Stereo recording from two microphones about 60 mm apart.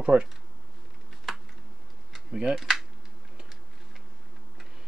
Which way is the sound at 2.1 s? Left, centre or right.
Centre.